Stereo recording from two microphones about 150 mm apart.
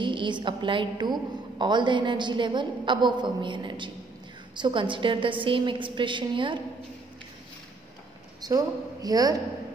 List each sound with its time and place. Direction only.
0.0 s a woman's voice: 30° right (ahead or behind)
8.5 s a woman's voice: 25° right (ahead or behind)